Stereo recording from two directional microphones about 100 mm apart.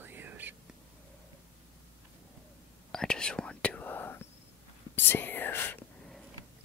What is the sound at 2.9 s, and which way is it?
Whispering, 5° left (ahead or behind).